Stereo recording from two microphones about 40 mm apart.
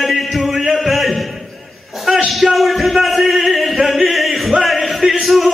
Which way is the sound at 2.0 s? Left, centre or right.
Centre.